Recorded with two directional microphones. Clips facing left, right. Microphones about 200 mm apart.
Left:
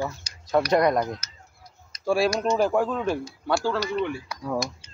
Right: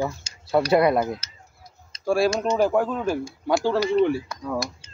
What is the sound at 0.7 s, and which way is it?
Speech, 5° right (ahead or behind).